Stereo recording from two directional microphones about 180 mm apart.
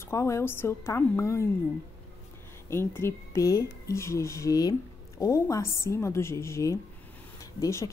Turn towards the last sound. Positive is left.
turn(degrees=15)  # may be behind; listen again after turning